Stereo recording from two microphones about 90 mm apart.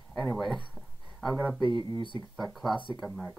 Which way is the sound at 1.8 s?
60° left (ahead or behind).